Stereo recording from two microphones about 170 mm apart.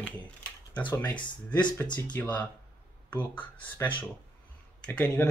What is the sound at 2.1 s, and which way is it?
Speech, 10° left (ahead or behind).